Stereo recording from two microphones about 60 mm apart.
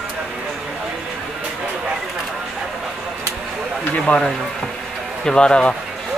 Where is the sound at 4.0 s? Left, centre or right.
Centre.